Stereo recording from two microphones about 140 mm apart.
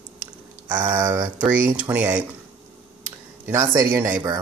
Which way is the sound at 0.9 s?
30° right (ahead or behind).